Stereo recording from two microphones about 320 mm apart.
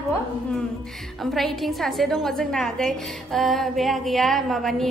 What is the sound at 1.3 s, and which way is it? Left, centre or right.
A woman's voice, centre.